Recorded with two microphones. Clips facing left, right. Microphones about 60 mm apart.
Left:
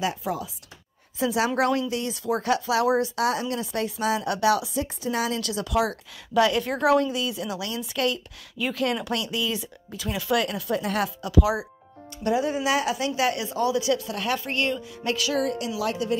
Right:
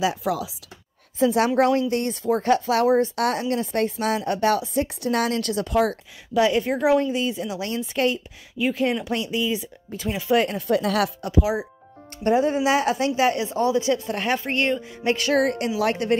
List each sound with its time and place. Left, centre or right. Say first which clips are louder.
0.0 s speech: right 4 dB; right
1.2 s speech: right 4 dB; right
4.8 s speech: right 4 dB; right
6.3 s a woman's voice: right 2 dB; right
8.5 s a woman's voice: right 3 dB; right
12.2 s speech: right 4 dB; right